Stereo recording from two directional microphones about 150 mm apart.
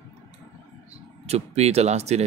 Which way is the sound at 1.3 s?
45° right (ahead or behind).